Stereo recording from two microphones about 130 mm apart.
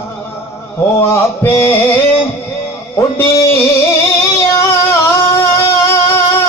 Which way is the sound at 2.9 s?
15° left (ahead or behind).